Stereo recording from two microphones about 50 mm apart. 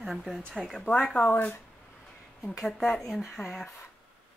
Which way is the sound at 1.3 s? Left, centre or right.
Left.